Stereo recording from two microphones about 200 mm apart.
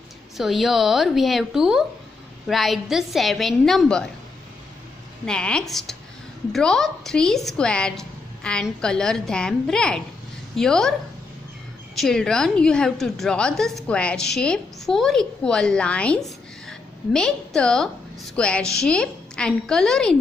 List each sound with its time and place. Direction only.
0.4 s a woman's voice: centre (ahead or behind)
5.2 s a woman's voice: 5° left (ahead or behind)
16.6 s a sound: 5° left (ahead or behind)
18.3 s a woman's voice: 5° left (ahead or behind)